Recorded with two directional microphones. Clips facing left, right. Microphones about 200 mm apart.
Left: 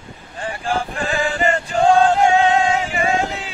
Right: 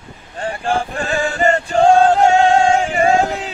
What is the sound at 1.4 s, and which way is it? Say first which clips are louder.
Male singing: right 4 dB; 40° right (ahead or behind).